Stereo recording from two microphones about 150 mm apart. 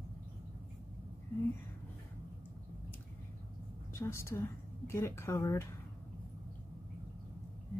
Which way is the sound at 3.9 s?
20° left (ahead or behind).